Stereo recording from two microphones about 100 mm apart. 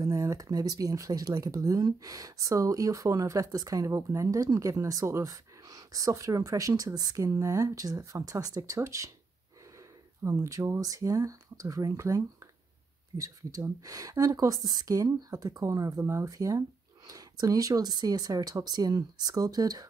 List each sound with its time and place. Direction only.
0.0 s speech: 35° right (ahead or behind)
10.2 s speech: 30° right (ahead or behind)